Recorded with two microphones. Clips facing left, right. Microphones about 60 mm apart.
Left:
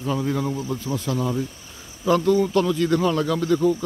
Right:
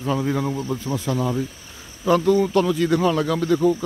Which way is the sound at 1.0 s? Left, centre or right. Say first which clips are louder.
Right 1 dB; centre.